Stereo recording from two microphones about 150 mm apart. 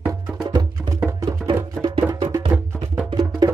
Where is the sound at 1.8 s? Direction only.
35° right (ahead or behind).